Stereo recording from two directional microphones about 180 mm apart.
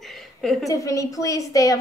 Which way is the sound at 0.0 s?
Centre (ahead or behind).